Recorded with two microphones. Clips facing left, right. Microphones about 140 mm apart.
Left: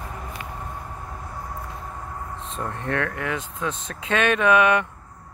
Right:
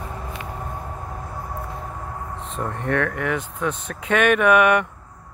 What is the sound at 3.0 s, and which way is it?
Speech, 20° left (ahead or behind).